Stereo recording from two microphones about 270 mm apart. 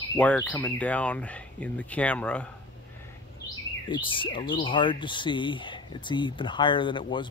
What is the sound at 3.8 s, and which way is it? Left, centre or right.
Speech, centre.